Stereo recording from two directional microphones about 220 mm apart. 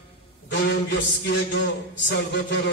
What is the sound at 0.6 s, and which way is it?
A man's voice, 45° left (ahead or behind).